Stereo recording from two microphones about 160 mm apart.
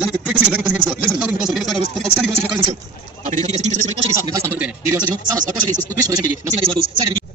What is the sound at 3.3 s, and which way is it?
Speech, 45° right (ahead or behind).